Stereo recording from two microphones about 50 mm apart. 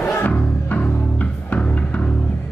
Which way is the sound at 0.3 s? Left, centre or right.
Left.